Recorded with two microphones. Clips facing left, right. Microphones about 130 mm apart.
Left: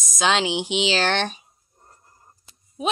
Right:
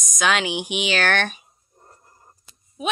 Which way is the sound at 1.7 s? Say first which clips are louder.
Right 3 dB; 10° right (ahead or behind).